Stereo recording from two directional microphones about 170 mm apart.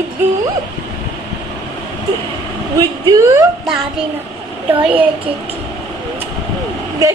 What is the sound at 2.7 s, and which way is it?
Speech, 20° right (ahead or behind).